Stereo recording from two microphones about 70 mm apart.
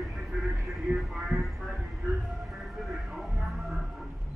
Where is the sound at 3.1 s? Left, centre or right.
Centre.